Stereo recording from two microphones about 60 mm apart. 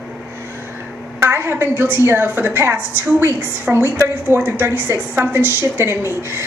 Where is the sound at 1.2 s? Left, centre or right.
Right.